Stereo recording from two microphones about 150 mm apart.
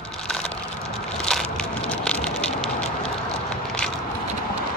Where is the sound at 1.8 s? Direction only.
5° left (ahead or behind).